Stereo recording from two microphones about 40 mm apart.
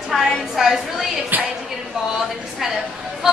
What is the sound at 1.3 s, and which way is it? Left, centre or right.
Speech, right.